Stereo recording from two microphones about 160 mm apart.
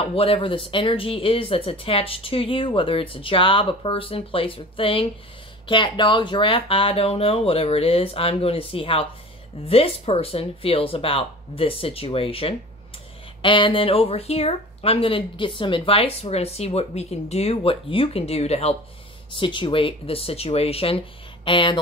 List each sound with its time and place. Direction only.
0.0 s speech: 35° left (ahead or behind)
19.3 s speech: 30° left (ahead or behind)